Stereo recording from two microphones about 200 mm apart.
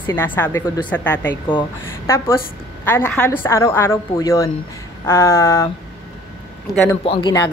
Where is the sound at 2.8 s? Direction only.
10° left (ahead or behind).